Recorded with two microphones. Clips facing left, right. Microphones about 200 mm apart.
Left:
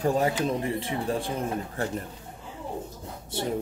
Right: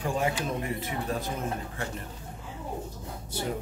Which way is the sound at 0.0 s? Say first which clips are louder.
Left 5 dB; 40° left (ahead or behind).